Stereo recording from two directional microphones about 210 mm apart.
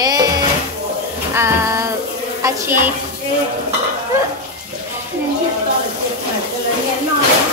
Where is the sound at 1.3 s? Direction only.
15° right (ahead or behind).